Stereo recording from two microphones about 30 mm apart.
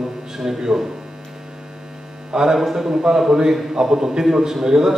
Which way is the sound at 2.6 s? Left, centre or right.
Centre.